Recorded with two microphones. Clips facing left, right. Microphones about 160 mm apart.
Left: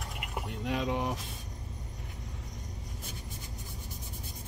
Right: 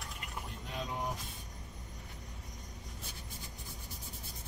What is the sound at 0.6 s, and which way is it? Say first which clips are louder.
Speech: left 9 dB; 85° left.